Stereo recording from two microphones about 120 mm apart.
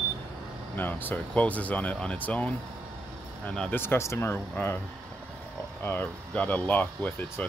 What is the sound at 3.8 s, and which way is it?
Speech, 20° left (ahead or behind).